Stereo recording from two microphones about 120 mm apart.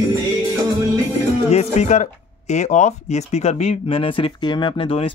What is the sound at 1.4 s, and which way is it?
Speech, 65° left (ahead or behind).